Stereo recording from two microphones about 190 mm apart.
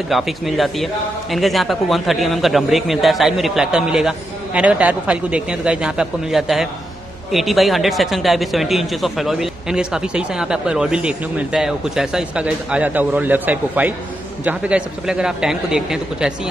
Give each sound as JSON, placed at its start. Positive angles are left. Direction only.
{"t": 0.1, "sound": "speech", "side_deg": 0}